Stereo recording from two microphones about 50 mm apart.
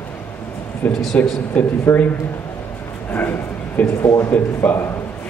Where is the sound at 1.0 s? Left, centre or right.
Centre.